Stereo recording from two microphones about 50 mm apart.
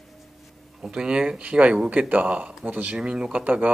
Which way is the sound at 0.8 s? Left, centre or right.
Centre.